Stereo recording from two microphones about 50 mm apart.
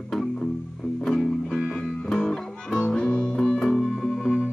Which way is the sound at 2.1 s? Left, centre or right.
Centre.